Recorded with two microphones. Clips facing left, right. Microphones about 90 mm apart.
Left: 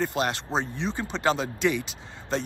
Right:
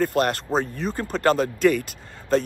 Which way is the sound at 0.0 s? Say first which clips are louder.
Right 5 dB; 50° right (ahead or behind).